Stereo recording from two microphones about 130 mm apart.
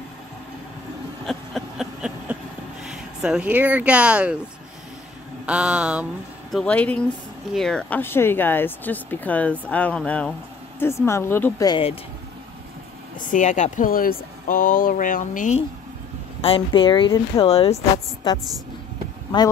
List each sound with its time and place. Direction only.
1.2 s a sound: centre (ahead or behind)
2.8 s speech: 5° right (ahead or behind)
5.5 s a sound: 5° right (ahead or behind)
6.5 s speech: 10° left (ahead or behind)
8.0 s speech: 15° left (ahead or behind)
10.8 s speech: 20° left (ahead or behind)
13.3 s speech: 70° left (ahead or behind)
16.3 s speech: 45° left (ahead or behind)
17.4 s speech: 50° left (ahead or behind)
17.9 s speech: 30° left (ahead or behind)